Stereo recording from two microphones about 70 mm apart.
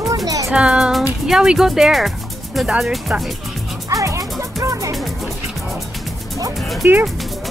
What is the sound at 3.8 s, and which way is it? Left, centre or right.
Music, right.